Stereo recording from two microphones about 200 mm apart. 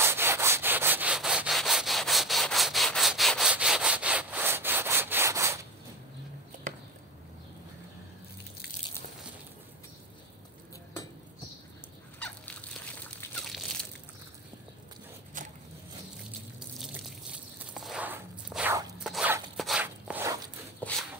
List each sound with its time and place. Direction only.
0.0 s wood: 10° right (ahead or behind)
13.2 s crushing: 5° left (ahead or behind)
15.4 s vehicle: 40° right (ahead or behind)
16.5 s a sound: 5° right (ahead or behind)